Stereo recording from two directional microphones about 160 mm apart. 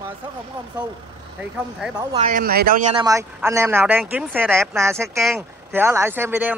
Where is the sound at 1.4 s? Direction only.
5° right (ahead or behind).